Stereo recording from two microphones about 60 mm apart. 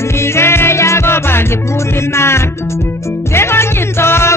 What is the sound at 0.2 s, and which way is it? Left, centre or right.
Music, left.